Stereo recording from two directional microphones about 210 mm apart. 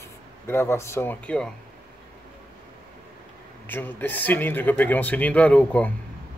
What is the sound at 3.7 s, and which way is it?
Speech, 10° left (ahead or behind).